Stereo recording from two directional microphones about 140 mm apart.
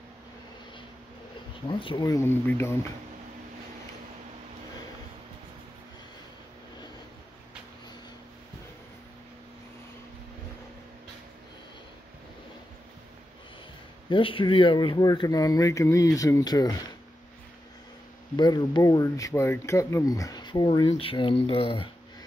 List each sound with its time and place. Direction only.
1.7 s speech: 35° left (ahead or behind)
2.0 s speech: 20° left (ahead or behind)
14.0 s speech: 35° left (ahead or behind)
18.3 s speech: 30° left (ahead or behind)
20.8 s speech: 45° left (ahead or behind)